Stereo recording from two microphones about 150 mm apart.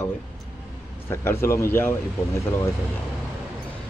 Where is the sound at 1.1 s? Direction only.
15° left (ahead or behind).